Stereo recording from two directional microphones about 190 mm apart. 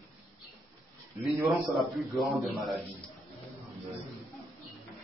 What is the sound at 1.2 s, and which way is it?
A man's voice, centre (ahead or behind).